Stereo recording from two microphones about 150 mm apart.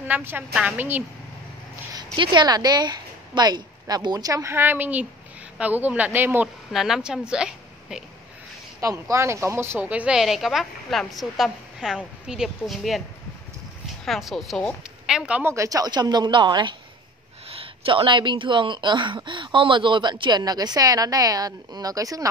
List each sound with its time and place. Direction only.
0.0 s a woman's voice: 15° right (ahead or behind)
2.1 s a woman's voice: 30° right (ahead or behind); by 6.5 s 15° right (ahead or behind)
6.7 s a woman's voice: centre (ahead or behind)
8.8 s a woman's voice: 25° right (ahead or behind); by 13.0 s centre (ahead or behind)
14.0 s a woman's voice: centre (ahead or behind)
15.5 s a woman's voice: 20° right (ahead or behind)